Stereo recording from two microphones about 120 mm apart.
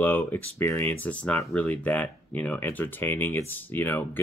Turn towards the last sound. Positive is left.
turn(degrees=15)  # may be behind; listen again after turning